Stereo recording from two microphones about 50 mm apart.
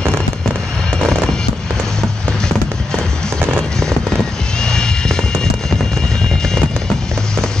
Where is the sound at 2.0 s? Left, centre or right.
Centre.